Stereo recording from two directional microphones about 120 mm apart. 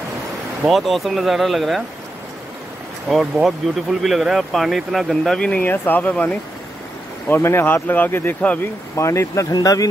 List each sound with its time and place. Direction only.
0.7 s speech: centre (ahead or behind)
3.1 s speech: centre (ahead or behind); by 9.8 s 30° left (ahead or behind)